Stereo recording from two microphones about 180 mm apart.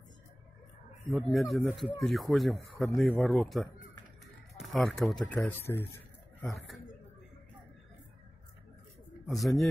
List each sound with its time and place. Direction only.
1.1 s speech: centre (ahead or behind)
9.2 s speech: centre (ahead or behind)